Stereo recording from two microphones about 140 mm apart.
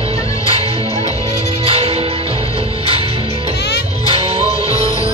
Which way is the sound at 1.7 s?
45° right (ahead or behind).